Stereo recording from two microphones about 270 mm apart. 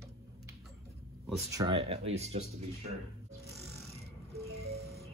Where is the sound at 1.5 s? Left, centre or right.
Centre.